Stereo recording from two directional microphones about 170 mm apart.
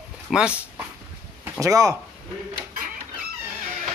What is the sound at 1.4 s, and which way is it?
Speech, 20° right (ahead or behind).